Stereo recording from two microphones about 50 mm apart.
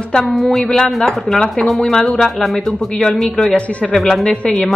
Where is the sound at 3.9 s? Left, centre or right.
Centre.